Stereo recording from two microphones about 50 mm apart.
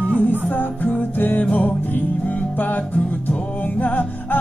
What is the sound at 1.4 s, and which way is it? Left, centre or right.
Music, left.